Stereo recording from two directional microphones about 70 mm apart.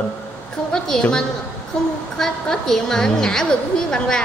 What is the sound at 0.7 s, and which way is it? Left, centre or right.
Speech, centre.